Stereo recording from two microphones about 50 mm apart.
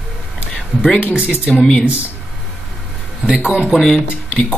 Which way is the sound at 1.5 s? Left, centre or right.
Centre.